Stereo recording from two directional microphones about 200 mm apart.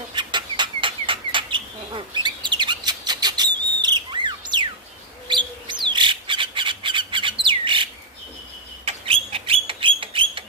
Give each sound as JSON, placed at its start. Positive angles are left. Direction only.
{"t": 0.1, "sound": "bird", "side_deg": -25}
{"t": 5.3, "sound": "squawk", "side_deg": -25}
{"t": 8.8, "sound": "a sound", "side_deg": -30}